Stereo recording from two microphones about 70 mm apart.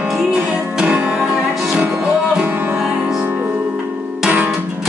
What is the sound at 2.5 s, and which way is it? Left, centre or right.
Music, right.